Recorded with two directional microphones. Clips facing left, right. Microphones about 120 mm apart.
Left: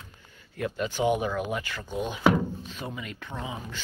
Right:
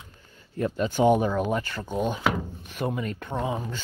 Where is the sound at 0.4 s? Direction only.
35° right (ahead or behind); by 3.0 s 55° right (ahead or behind).